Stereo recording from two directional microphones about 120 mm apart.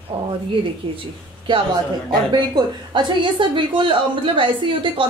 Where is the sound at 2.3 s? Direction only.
40° right (ahead or behind).